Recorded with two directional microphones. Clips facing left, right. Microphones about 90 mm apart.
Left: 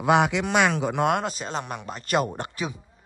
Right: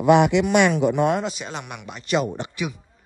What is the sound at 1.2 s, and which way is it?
Speech, 40° left (ahead or behind).